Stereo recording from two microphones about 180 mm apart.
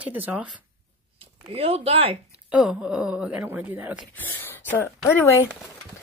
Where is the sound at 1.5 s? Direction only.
35° right (ahead or behind).